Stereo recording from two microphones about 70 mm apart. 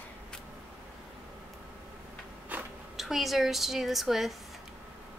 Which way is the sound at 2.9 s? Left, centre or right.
Centre.